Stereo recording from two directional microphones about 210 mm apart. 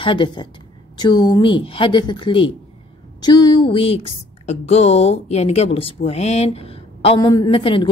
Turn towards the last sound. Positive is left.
turn(degrees=25)  # may be behind; listen again after turning